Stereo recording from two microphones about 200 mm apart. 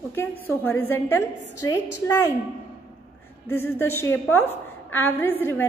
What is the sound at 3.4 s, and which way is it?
A woman's voice, 10° left (ahead or behind).